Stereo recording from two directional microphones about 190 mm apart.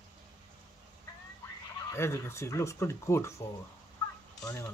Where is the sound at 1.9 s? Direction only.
15° left (ahead or behind).